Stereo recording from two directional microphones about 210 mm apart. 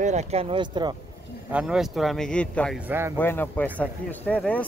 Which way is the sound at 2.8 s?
10° right (ahead or behind).